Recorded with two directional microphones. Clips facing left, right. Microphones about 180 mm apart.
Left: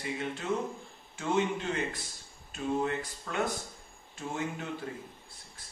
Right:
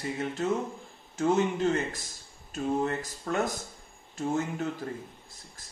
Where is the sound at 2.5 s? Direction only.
40° right (ahead or behind).